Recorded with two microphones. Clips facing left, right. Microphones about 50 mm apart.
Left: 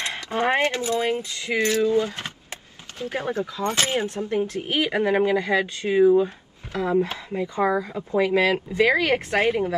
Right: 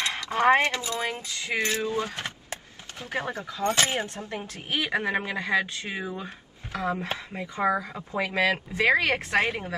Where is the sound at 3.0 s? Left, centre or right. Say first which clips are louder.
Left 3 dB; right.